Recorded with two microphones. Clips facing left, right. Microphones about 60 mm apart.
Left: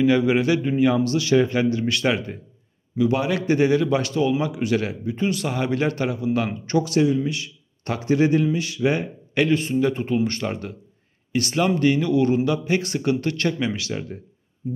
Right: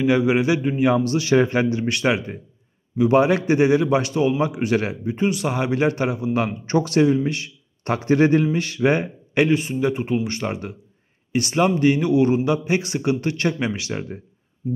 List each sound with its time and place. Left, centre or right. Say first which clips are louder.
0.0 s speech: even; centre
0.9 s a man's voice: right 1 dB; right
3.0 s a man's voice: right 5 dB; right
6.8 s a man's voice: right 2 dB; right
9.0 s a man's voice: right 2 dB; centre